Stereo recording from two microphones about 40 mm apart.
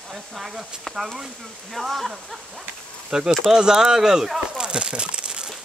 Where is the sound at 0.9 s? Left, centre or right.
Centre.